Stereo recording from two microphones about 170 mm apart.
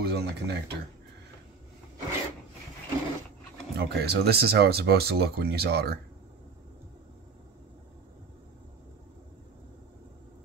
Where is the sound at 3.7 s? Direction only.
70° right (ahead or behind).